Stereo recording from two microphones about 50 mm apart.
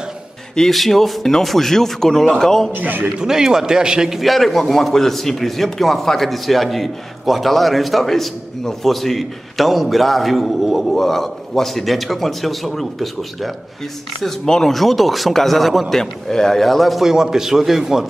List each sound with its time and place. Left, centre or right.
0.6 s a man's voice: centre
2.7 s a man's voice: right
3.2 s a man's voice: centre
4.2 s a man's voice: centre
16.0 s a man's voice: centre
17.1 s a man's voice: centre